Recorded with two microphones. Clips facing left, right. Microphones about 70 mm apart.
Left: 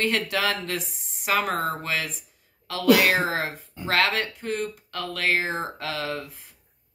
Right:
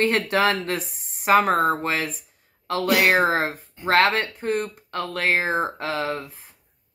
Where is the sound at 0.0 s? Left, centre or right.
Right.